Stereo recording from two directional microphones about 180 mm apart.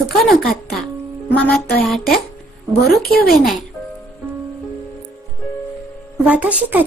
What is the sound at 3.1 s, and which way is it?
Speech, 55° left (ahead or behind).